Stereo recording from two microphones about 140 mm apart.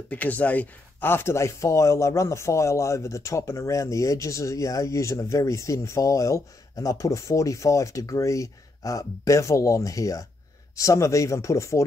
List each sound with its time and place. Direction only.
0.1 s speech: 10° left (ahead or behind)